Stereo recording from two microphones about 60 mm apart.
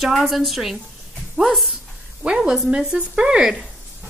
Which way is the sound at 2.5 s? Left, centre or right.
Centre.